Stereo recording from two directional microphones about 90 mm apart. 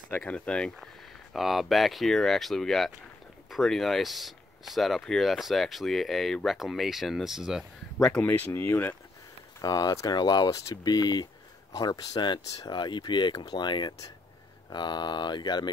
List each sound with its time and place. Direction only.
0.2 s speech: 10° left (ahead or behind)
1.3 s speech: centre (ahead or behind)
8.2 s speech: 20° left (ahead or behind)
9.6 s speech: 50° left (ahead or behind)
10.5 s speech: 45° left (ahead or behind)